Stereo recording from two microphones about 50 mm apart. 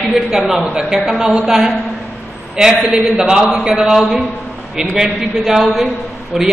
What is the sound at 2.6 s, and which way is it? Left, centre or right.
A man's voice, centre.